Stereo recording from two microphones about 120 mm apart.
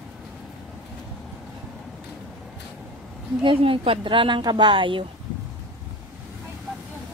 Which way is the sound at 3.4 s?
45° right (ahead or behind).